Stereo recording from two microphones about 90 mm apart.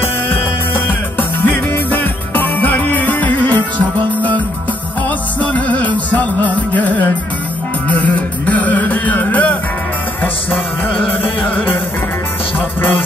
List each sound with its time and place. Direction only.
1.4 s music: 20° left (ahead or behind)
5.4 s music: 15° left (ahead or behind)